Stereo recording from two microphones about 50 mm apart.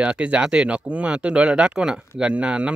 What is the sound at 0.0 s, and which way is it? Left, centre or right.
Speech, right.